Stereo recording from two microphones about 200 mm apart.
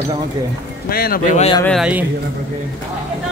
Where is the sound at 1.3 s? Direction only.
30° left (ahead or behind).